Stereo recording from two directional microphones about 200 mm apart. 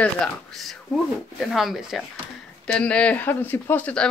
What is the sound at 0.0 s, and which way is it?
Speech, centre (ahead or behind).